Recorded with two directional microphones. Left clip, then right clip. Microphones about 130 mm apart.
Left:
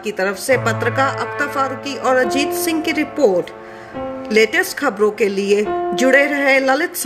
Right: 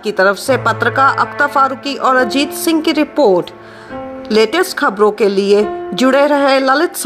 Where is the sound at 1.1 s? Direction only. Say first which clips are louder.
Right 8 dB; 30° right (ahead or behind).